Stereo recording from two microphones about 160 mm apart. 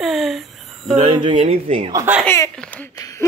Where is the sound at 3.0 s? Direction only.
20° left (ahead or behind).